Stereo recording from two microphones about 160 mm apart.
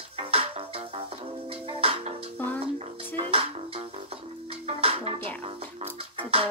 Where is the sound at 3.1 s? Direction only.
35° right (ahead or behind).